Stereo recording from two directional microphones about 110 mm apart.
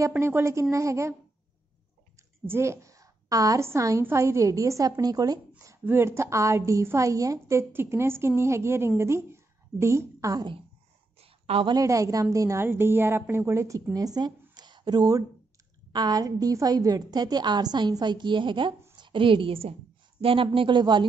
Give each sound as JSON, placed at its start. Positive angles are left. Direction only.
{"t": 0.2, "sound": "a woman's voice", "side_deg": -25}
{"t": 2.4, "sound": "a woman's voice", "side_deg": -25}
{"t": 11.1, "sound": "a sound", "side_deg": -65}
{"t": 11.6, "sound": "a woman's voice", "side_deg": -35}
{"t": 14.5, "sound": "a sound", "side_deg": -40}
{"t": 15.9, "sound": "a woman's voice", "side_deg": -35}